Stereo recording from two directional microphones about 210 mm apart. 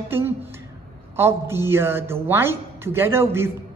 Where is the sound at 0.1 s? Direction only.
10° right (ahead or behind).